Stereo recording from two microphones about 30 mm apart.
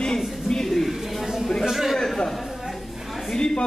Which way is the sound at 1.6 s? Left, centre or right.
Centre.